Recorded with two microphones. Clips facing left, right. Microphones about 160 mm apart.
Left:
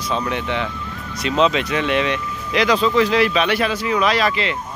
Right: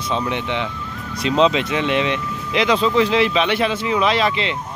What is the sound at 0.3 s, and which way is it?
Speech, 20° right (ahead or behind).